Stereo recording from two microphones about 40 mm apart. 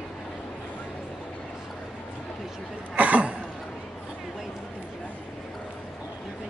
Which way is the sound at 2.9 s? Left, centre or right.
Right.